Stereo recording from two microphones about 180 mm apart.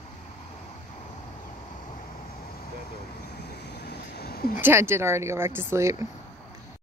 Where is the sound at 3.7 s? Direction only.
65° left (ahead or behind).